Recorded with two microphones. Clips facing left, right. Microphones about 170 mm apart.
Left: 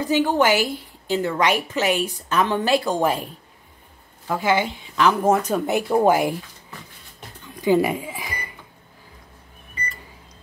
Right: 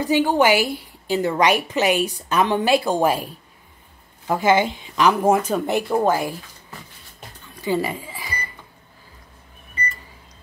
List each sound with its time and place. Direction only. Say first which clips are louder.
0.1 s a woman's voice: right 1 dB; 10° right (ahead or behind)
4.3 s a woman's voice: right 3 dB; 20° right (ahead or behind)
5.5 s speech: even; 5° left (ahead or behind)
5.9 s speech: left 4 dB; 15° left (ahead or behind)
7.6 s speech: left 5 dB; 15° left (ahead or behind)